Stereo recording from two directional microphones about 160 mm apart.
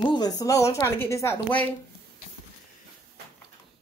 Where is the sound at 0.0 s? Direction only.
25° left (ahead or behind).